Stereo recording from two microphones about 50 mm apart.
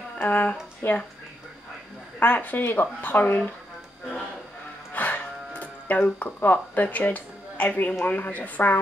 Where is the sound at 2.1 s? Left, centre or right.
Left.